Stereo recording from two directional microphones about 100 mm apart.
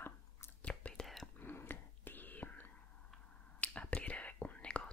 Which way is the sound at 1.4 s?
20° left (ahead or behind).